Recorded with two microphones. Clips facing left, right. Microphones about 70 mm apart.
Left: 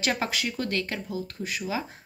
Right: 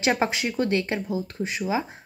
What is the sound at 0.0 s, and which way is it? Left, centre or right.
Speech, right.